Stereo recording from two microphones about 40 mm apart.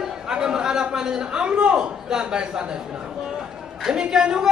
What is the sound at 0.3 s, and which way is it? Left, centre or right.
A man's voice, centre.